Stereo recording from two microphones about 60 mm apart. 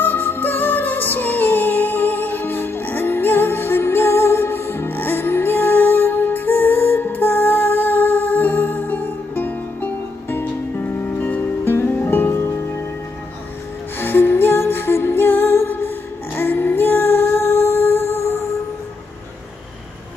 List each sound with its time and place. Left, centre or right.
0.0 s music: left
11.9 s music: left
12.4 s music: left
13.9 s music: left